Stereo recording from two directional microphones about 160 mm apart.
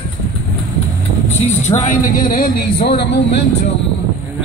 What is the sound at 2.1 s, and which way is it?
Speech, 60° left (ahead or behind).